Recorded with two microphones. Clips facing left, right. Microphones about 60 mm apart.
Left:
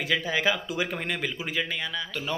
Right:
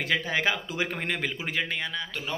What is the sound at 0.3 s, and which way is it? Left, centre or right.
Speech, right.